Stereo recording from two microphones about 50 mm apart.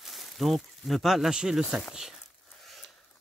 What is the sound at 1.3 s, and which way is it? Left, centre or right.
Speech, centre.